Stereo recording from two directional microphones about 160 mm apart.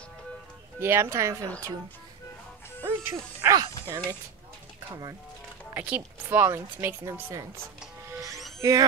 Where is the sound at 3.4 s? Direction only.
20° right (ahead or behind).